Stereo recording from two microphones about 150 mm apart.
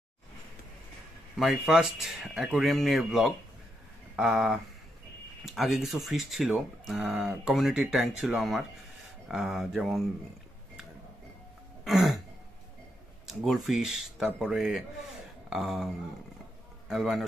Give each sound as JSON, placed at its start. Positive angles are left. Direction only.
{"t": 1.4, "sound": "speech", "side_deg": 0}
{"t": 11.8, "sound": "throat clearing", "side_deg": 0}
{"t": 13.3, "sound": "a man's voice", "side_deg": 0}